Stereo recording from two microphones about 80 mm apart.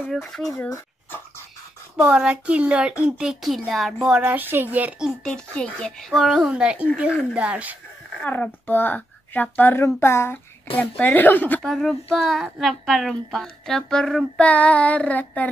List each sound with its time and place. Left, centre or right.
0.1 s a woman's voice: centre
2.0 s a woman's voice: centre
4.2 s speech: right
5.2 s child singing: centre
6.1 s speech: centre
8.2 s a child's voice: left
9.8 s speech: left
10.8 s speech: left
11.6 s a woman's voice: centre
14.4 s child singing: centre